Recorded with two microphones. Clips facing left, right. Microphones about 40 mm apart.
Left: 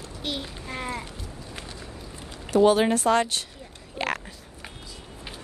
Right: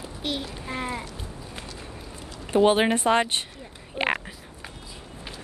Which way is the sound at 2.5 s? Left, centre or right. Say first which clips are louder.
Left 1 dB; right.